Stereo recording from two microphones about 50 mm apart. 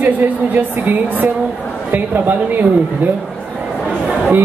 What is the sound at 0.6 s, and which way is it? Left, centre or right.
Speech, right.